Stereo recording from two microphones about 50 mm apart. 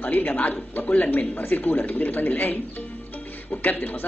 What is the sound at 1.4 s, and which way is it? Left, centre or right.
A man's voice, left.